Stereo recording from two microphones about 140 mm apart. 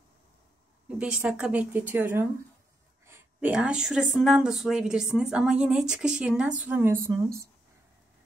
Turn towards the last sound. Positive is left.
turn(degrees=-20)  # may be behind; listen again after turning